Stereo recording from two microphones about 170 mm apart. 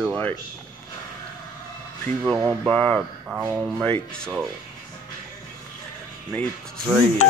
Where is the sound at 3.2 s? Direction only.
10° right (ahead or behind).